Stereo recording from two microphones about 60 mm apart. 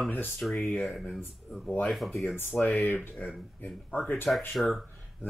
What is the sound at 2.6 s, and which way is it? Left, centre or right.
Speech, left.